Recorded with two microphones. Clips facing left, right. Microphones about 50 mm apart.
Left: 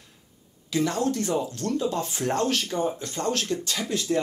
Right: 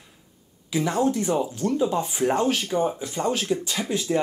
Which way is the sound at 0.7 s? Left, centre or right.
Centre.